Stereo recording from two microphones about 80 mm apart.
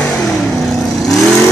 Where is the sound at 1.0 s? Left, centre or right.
Centre.